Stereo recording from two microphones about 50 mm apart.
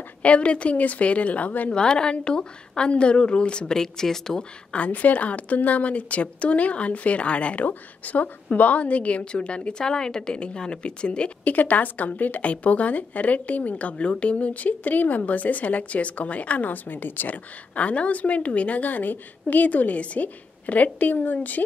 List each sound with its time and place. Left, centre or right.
0.2 s a woman's voice: left
1.7 s a woman's voice: centre
4.7 s a woman's voice: left
11.5 s a woman's voice: left